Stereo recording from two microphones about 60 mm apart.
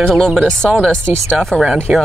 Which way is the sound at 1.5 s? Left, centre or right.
Centre.